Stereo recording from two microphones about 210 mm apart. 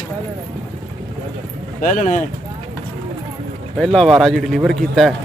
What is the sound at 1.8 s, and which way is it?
Speech, 35° left (ahead or behind).